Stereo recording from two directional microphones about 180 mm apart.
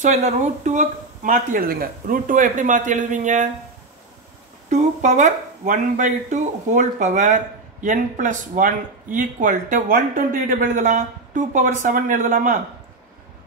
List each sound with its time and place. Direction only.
0.0 s speech: 40° right (ahead or behind)
4.6 s speech: 40° right (ahead or behind)